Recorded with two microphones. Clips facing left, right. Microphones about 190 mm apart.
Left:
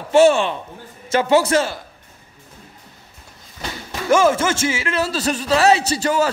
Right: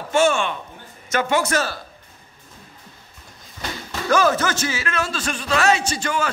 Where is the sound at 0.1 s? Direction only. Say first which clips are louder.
Left 6 dB; 35° left (ahead or behind).